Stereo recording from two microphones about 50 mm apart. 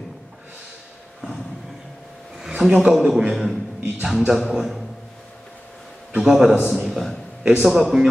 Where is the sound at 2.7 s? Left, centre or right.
Centre.